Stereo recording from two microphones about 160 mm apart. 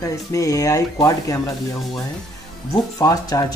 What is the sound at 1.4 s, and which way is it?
Speech, centre (ahead or behind).